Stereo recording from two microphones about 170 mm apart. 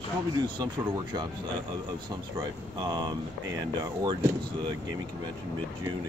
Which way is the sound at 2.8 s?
25° right (ahead or behind).